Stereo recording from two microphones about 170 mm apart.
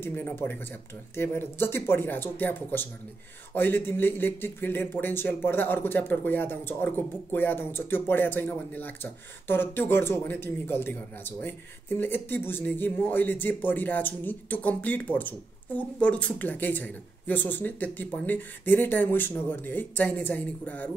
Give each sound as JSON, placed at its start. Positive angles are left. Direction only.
{"t": 0.0, "sound": "speech", "side_deg": 15}